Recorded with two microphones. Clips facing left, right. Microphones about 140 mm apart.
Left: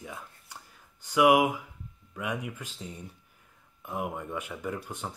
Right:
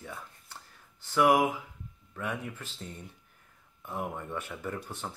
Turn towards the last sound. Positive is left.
turn(degrees=15)  # may be behind; listen again after turning